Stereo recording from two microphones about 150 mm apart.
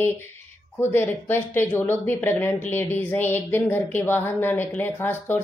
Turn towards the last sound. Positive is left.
turn(degrees=15)  # may be behind; listen again after turning